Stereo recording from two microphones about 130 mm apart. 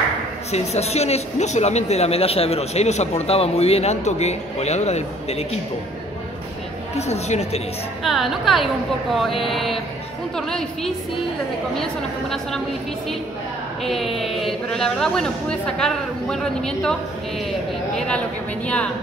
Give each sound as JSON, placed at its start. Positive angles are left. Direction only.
{"t": 0.5, "sound": "a man's voice", "side_deg": 55}
{"t": 7.0, "sound": "a man's voice", "side_deg": 60}
{"t": 8.0, "sound": "speech", "side_deg": 0}
{"t": 13.8, "sound": "speech", "side_deg": 0}
{"t": 17.9, "sound": "a woman's voice", "side_deg": 10}